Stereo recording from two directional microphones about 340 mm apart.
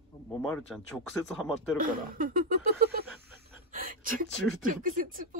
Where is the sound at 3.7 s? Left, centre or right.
Right.